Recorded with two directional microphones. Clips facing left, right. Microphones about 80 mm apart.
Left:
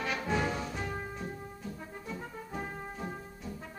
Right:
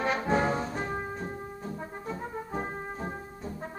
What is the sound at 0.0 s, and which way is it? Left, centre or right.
Music, right.